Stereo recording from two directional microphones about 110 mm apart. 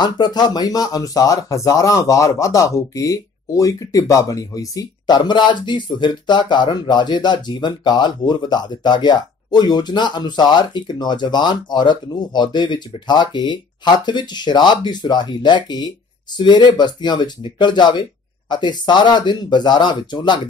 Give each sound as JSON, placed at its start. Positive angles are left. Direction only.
{"t": 0.0, "sound": "speech", "side_deg": 40}